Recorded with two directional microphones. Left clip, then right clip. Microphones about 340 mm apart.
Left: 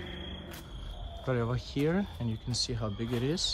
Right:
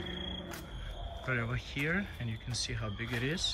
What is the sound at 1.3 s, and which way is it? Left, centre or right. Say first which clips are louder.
Speech: left 3 dB; centre.